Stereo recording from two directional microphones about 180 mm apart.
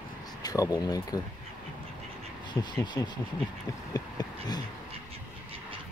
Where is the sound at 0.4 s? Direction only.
20° left (ahead or behind).